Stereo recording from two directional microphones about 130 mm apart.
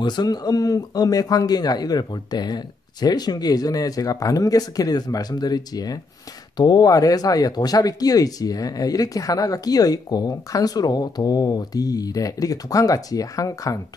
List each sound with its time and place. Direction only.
0.0 s speech: 35° left (ahead or behind)